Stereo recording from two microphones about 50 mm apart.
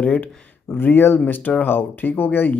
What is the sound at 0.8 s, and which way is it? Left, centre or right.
Speech, left.